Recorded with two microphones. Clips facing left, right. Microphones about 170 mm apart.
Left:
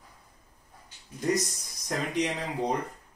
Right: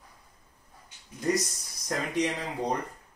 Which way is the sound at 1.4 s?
20° left (ahead or behind).